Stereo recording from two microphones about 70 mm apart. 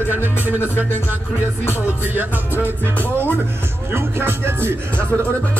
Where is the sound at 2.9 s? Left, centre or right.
Left.